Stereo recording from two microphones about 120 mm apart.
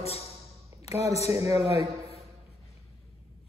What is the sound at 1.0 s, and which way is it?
Speech, 25° right (ahead or behind).